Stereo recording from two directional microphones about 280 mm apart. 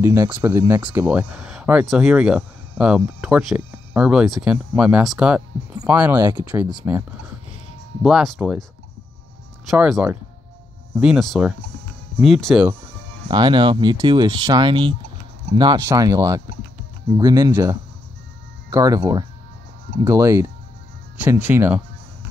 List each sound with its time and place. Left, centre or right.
0.0 s speech: centre
9.7 s speech: centre
13.3 s speech: centre